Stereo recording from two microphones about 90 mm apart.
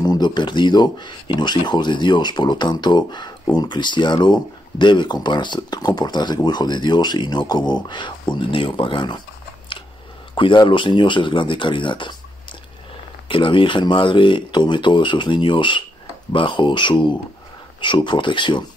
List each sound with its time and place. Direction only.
0.0 s speech: 50° left (ahead or behind)
10.3 s speech: 65° left (ahead or behind)
13.3 s speech: 70° left (ahead or behind)